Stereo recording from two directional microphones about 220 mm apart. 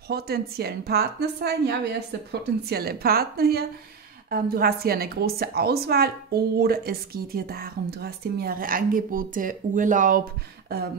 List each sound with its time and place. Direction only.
0.1 s a woman's voice: 45° right (ahead or behind)